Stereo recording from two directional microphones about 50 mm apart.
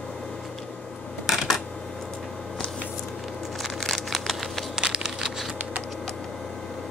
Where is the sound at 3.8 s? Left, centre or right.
Centre.